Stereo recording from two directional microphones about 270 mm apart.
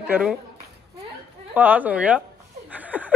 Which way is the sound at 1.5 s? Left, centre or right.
Centre.